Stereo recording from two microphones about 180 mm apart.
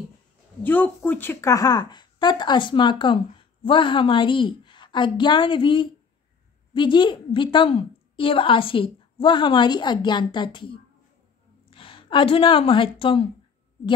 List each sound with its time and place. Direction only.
0.7 s a woman's voice: 10° left (ahead or behind); by 13.3 s 30° left (ahead or behind)